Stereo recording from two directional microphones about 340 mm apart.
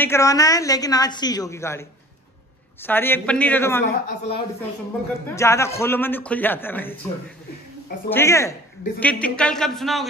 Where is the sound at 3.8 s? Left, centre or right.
Centre.